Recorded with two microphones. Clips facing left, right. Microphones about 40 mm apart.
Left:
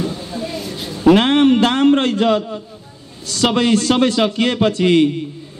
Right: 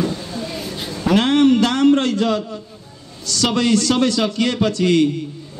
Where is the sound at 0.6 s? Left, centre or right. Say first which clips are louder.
Left 1 dB; centre.